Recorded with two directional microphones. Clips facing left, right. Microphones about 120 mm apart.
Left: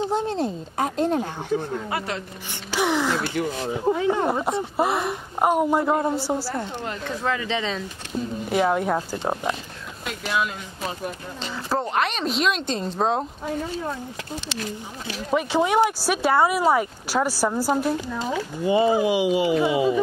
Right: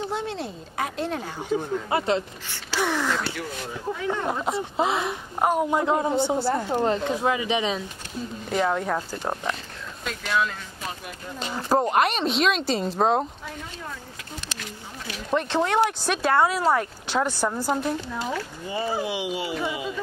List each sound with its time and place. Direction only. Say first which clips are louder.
0.1 s speech: left 6 dB; 40° left (ahead or behind)
1.0 s speech: left 5 dB; 15° left (ahead or behind)
1.9 s speech: right 5 dB; 25° right (ahead or behind)
2.7 s a woman's voice: left 3 dB; 15° left (ahead or behind)
6.7 s speech: right 8 dB; 35° right (ahead or behind)
7.1 s speech: right 2 dB; 15° right (ahead or behind)
8.5 s speech: left 2 dB; 10° left (ahead or behind)
11.5 s speech: right 3 dB; 15° right (ahead or behind)
12.1 s a woman's voice: right 1 dB; centre (ahead or behind)
15.3 s speech: left 2 dB; 10° left (ahead or behind)
18.3 s speech: left 8 dB; 15° left (ahead or behind)
19.7 s speech: left 10 dB; 25° left (ahead or behind)